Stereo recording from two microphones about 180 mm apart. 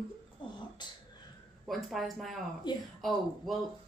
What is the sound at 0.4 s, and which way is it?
Beatboxing, 25° left (ahead or behind).